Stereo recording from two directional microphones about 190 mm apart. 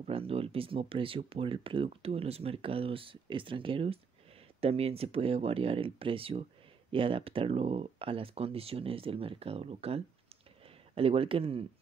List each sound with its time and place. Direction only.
0.0 s speech: 30° right (ahead or behind)